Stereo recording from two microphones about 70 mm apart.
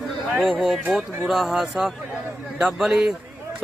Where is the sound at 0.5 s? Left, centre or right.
Centre.